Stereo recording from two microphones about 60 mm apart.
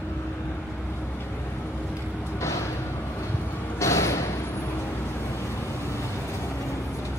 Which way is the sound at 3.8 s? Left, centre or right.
Left.